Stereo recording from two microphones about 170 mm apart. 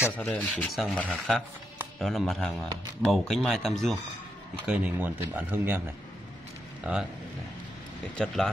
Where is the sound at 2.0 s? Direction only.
Centre (ahead or behind).